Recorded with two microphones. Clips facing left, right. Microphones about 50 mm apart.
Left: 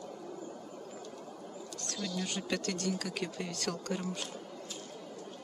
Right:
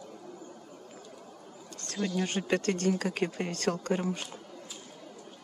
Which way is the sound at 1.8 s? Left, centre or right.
Right.